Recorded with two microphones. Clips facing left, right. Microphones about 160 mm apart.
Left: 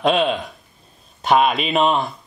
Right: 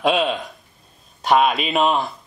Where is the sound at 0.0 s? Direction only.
Centre (ahead or behind).